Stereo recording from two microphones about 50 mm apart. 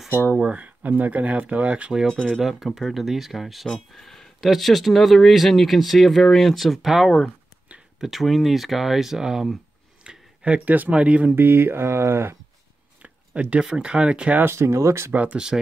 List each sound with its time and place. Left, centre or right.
0.4 s speech: right
2.0 s speech: centre
2.4 s speech: centre
10.0 s speech: right
11.3 s speech: right
13.0 s a sound: right
13.7 s speech: centre
14.5 s speech: right
15.3 s speech: centre